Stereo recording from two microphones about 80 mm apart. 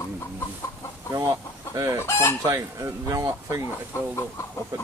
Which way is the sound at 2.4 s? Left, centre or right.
Right.